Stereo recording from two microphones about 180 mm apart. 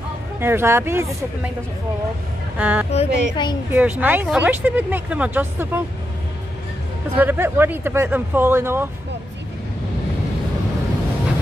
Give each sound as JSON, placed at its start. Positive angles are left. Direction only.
{"t": 0.4, "sound": "speech", "side_deg": -15}
{"t": 2.5, "sound": "speech", "side_deg": -10}
{"t": 2.9, "sound": "speech", "side_deg": 30}
{"t": 3.7, "sound": "speech", "side_deg": -10}
{"t": 7.2, "sound": "speech", "side_deg": -10}